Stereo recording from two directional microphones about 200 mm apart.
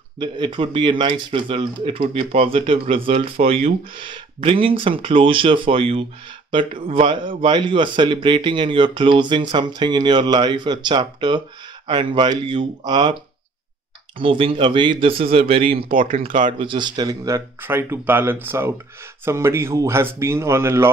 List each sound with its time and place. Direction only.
0.2 s a man's voice: 25° right (ahead or behind)
14.1 s a man's voice: 25° right (ahead or behind)
15.9 s speech: 45° right (ahead or behind)
16.5 s speech: 25° right (ahead or behind)